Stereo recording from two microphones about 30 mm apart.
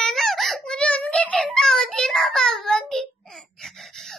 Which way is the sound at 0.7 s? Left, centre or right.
Left.